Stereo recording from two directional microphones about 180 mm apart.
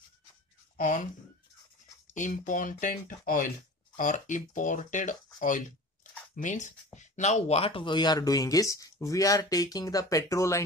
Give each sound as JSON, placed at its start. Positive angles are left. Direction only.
{"t": 0.7, "sound": "speech", "side_deg": 45}
{"t": 2.1, "sound": "speech", "side_deg": 45}
{"t": 6.3, "sound": "speech", "side_deg": 45}